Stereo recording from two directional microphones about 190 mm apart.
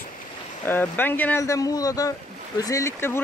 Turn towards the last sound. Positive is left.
turn(degrees=15)  # may be behind; listen again after turning